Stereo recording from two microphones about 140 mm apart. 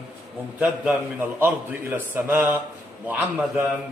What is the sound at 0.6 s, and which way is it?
A man's voice, 10° right (ahead or behind).